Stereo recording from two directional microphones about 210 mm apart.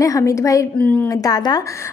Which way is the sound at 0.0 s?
15° left (ahead or behind).